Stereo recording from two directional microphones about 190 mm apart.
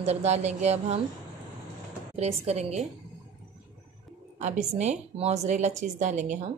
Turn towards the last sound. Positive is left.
turn(degrees=-40)  # may be behind; listen again after turning